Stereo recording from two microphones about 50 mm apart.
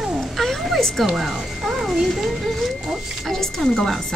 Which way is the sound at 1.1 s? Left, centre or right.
Centre.